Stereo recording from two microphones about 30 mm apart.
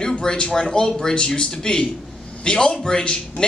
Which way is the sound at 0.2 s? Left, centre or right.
Left.